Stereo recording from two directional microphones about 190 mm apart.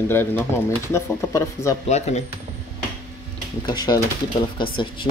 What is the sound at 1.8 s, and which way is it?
Speech, 35° left (ahead or behind).